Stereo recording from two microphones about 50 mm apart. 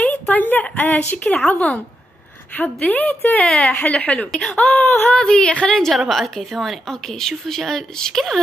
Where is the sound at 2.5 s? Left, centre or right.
Left.